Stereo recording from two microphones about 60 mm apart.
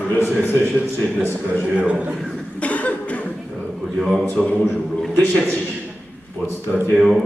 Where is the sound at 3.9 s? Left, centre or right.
Centre.